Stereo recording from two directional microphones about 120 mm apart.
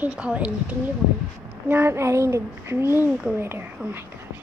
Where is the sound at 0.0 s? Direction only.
10° right (ahead or behind).